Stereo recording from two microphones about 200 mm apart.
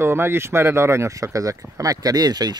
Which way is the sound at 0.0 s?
10° right (ahead or behind).